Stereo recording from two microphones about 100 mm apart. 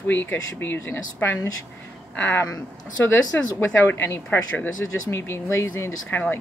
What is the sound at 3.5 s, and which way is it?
Speech, 25° left (ahead or behind).